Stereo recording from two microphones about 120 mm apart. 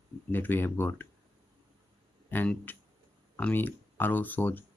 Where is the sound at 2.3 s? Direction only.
15° left (ahead or behind).